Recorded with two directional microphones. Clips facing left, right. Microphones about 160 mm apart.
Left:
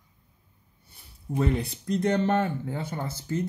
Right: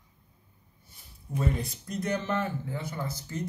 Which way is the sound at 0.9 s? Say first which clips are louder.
Left 4 dB; 60° left (ahead or behind).